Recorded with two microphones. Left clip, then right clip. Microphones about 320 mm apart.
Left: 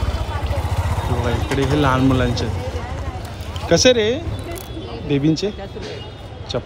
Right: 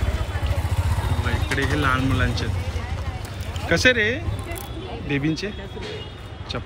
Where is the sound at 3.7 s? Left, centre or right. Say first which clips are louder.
Left 4 dB; centre.